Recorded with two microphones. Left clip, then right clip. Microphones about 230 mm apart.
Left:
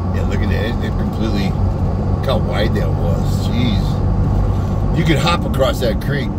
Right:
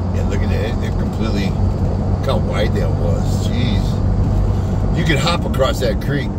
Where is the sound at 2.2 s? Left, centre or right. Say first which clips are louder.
Left 1 dB; centre.